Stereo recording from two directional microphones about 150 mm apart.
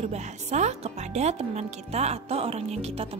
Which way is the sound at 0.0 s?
50° right (ahead or behind).